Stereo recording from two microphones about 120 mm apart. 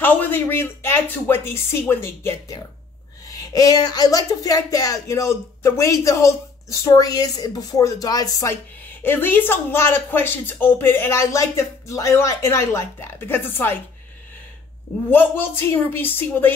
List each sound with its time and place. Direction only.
0.0 s speech: 15° left (ahead or behind); by 8.5 s 30° left (ahead or behind)
9.0 s speech: 15° left (ahead or behind)
15.0 s speech: 15° left (ahead or behind)